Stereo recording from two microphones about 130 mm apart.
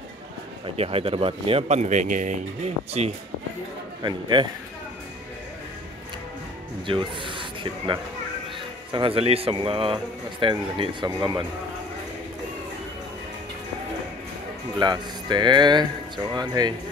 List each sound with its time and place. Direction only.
0.7 s speech: 50° right (ahead or behind)
4.0 s speech: 35° right (ahead or behind)
6.9 s speech: 40° right (ahead or behind)
14.8 s speech: 35° right (ahead or behind)